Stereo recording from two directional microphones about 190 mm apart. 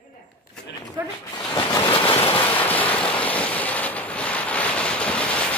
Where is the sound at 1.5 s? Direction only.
20° left (ahead or behind).